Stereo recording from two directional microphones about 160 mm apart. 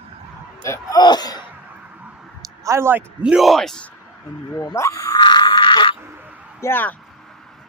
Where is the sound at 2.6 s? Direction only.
15° right (ahead or behind); by 3.8 s centre (ahead or behind).